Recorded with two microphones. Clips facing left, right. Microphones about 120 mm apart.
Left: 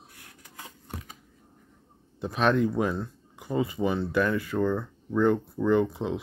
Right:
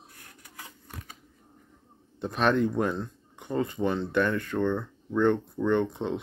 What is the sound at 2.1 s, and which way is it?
Speech, centre (ahead or behind).